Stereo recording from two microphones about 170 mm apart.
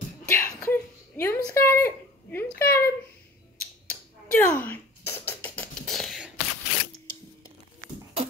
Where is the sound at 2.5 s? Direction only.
15° left (ahead or behind).